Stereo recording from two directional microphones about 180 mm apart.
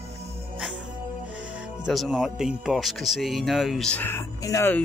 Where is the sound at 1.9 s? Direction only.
Centre (ahead or behind).